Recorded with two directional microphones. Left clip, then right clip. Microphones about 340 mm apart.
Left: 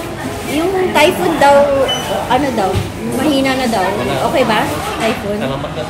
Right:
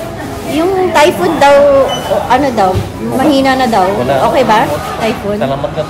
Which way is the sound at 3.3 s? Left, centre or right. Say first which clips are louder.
Right 6 dB; centre.